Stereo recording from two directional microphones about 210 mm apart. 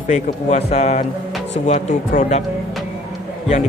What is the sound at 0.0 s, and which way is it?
A man's voice, 35° left (ahead or behind).